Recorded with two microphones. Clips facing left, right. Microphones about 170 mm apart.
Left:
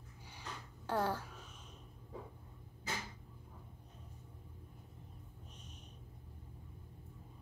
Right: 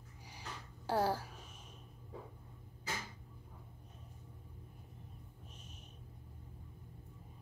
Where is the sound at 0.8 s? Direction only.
35° right (ahead or behind).